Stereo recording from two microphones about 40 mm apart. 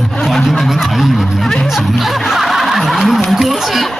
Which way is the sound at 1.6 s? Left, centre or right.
Centre.